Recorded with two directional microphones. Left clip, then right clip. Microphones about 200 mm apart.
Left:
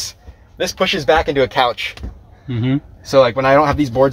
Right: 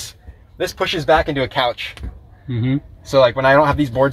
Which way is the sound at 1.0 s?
25° left (ahead or behind).